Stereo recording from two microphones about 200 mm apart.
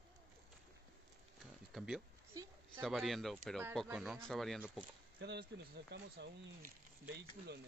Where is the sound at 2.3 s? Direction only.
15° right (ahead or behind).